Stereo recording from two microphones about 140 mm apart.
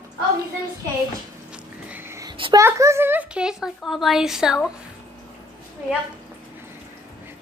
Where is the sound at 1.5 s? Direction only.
15° right (ahead or behind).